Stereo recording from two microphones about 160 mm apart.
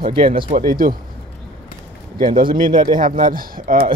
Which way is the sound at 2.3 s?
30° right (ahead or behind).